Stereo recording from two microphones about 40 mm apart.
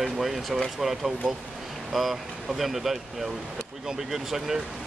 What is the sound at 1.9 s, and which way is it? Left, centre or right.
Speech, centre.